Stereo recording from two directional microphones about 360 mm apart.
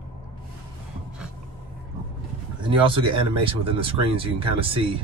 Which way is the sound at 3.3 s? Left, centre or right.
Centre.